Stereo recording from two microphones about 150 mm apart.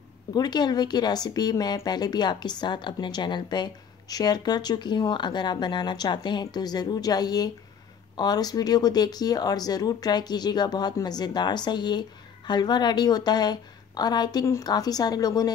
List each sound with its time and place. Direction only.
0.3 s speech: 25° left (ahead or behind)